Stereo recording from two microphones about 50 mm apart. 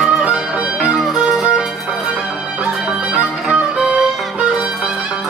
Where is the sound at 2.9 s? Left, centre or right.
Right.